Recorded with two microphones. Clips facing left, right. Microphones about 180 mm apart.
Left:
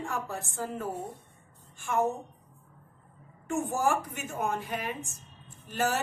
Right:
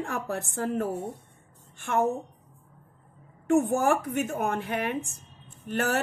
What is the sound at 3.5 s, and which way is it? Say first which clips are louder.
A woman's voice: right 6 dB; 60° right (ahead or behind).